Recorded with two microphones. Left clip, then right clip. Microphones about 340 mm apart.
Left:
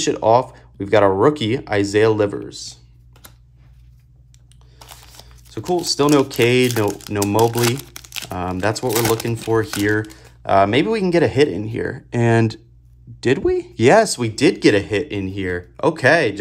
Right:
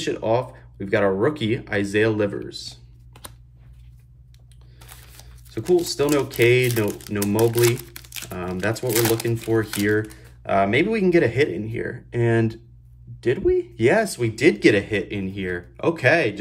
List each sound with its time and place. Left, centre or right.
0.0 s speech: centre
5.5 s speech: centre